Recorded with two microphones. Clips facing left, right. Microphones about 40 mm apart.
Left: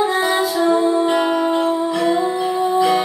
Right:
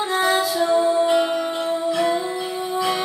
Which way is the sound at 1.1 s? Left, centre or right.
Left.